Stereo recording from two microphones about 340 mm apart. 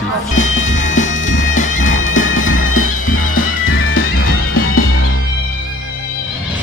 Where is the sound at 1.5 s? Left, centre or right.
Left.